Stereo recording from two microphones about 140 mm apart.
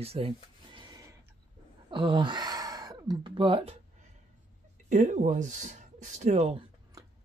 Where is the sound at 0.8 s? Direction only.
25° right (ahead or behind).